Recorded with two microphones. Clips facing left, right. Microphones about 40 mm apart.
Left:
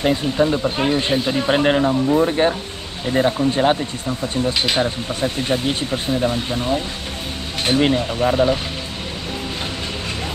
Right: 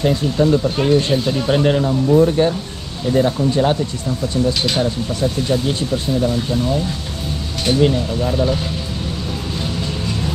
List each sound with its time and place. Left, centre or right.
0.0 s speech: left